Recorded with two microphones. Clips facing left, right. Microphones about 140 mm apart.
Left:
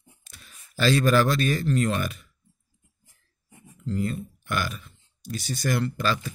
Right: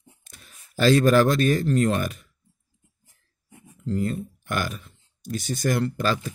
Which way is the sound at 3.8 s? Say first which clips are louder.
Right 2 dB; 40° right (ahead or behind).